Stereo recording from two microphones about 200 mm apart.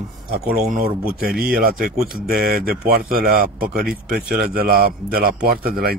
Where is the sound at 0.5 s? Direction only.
45° right (ahead or behind).